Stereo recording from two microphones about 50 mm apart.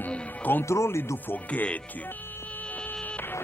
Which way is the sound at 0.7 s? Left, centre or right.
Left.